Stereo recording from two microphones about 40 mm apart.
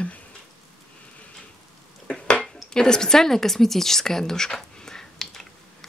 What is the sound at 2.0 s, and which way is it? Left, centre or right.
Dishes, left.